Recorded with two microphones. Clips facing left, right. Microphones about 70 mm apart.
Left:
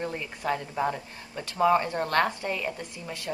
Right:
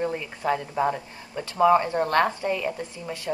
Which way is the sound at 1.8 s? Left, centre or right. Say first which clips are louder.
Right 3 dB; right.